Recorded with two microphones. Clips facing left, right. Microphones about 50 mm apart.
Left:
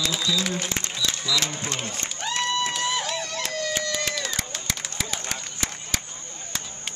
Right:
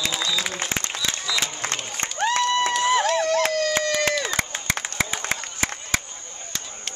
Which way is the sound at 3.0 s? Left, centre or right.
Right.